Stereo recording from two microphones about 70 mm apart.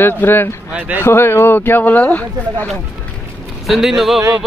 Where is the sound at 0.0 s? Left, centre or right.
Left.